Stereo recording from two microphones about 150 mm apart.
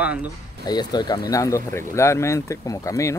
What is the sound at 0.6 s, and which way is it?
Speech, 25° left (ahead or behind).